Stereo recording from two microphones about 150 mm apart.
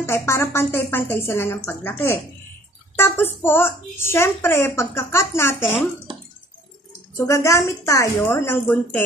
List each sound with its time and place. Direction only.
0.0 s speech: 15° left (ahead or behind)
7.2 s a woman's voice: 20° left (ahead or behind)